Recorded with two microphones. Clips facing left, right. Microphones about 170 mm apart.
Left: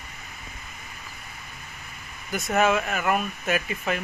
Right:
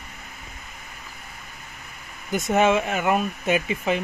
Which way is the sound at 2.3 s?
20° right (ahead or behind).